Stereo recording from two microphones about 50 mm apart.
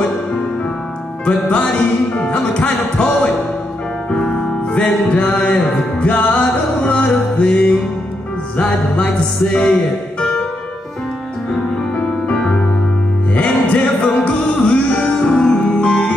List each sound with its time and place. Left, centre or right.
1.2 s music: left
4.1 s music: centre
5.1 s music: left
13.3 s music: left
15.2 s music: centre